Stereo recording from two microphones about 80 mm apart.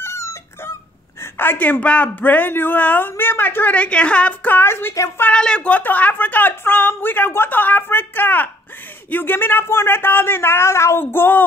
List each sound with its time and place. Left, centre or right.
0.0 s dog: left
1.2 s a man's voice: left
5.3 s a man's voice: centre; by 11.4 s left